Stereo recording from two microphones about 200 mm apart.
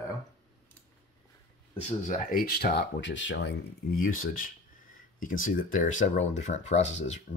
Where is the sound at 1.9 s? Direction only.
40° left (ahead or behind).